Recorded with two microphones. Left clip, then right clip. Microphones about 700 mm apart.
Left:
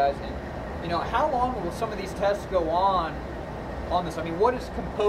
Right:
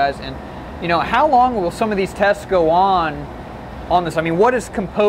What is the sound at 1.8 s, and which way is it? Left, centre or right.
Speech, right.